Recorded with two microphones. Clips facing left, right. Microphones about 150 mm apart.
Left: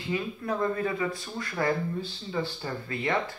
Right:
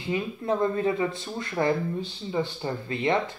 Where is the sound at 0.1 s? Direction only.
25° right (ahead or behind).